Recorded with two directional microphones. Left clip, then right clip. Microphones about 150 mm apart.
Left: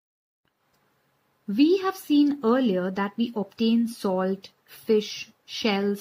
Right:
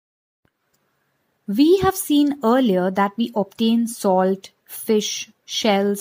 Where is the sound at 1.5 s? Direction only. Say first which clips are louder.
Right 6 dB; 50° right (ahead or behind).